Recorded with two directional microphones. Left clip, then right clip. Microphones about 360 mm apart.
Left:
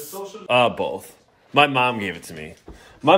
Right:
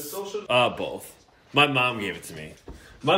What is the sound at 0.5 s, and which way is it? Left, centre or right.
Speech, centre.